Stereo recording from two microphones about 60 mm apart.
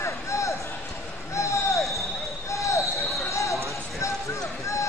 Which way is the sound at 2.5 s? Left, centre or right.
Left.